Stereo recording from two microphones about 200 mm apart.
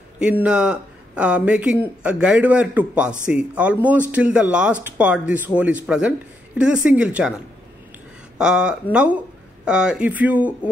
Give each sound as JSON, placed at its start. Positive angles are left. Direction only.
{"t": 0.2, "sound": "speech", "side_deg": -5}
{"t": 8.4, "sound": "a man's voice", "side_deg": -5}